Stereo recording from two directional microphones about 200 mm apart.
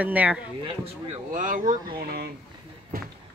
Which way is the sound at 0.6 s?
35° right (ahead or behind).